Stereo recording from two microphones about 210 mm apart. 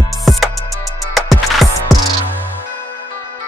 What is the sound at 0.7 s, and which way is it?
Music, 15° left (ahead or behind).